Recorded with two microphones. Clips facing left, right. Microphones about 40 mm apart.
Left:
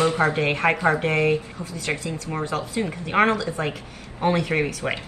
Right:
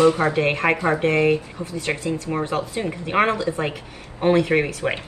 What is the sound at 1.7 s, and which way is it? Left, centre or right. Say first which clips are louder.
Speech: right 3 dB; right.